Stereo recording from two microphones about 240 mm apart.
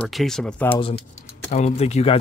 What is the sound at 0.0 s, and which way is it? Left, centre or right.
Speech, centre.